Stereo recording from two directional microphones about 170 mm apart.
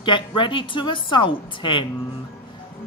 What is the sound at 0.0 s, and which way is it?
A woman's voice, 30° left (ahead or behind).